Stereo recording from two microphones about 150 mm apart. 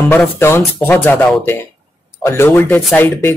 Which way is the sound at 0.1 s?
15° left (ahead or behind).